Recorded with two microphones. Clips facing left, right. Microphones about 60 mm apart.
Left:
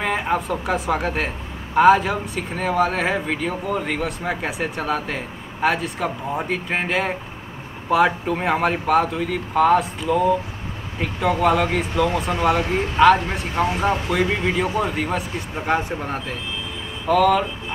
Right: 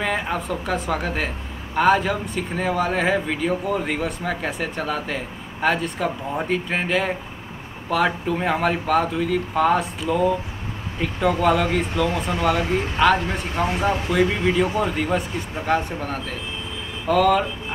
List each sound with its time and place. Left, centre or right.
0.0 s speech: centre
4.2 s speech: centre
17.1 s speech: centre